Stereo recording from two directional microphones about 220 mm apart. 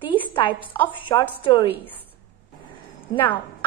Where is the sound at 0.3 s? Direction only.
20° left (ahead or behind).